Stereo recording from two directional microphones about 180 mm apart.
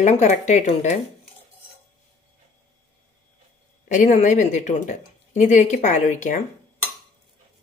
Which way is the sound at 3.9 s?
45° left (ahead or behind).